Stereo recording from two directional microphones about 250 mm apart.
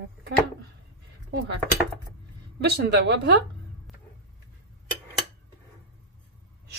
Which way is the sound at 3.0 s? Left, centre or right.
Right.